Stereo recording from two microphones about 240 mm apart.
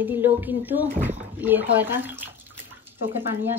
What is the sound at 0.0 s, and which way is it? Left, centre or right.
Speech, centre.